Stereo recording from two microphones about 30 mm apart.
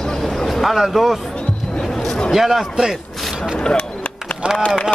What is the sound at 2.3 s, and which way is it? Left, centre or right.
Speech, centre.